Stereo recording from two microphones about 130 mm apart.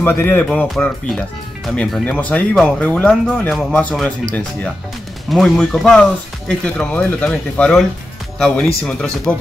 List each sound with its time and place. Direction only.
0.0 s speech: 15° left (ahead or behind)
2.0 s speech: 10° left (ahead or behind)